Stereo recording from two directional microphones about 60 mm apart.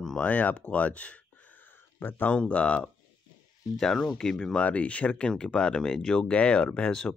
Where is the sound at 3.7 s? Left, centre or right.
Centre.